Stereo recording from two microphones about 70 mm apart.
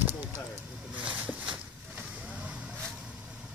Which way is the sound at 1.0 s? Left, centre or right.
Centre.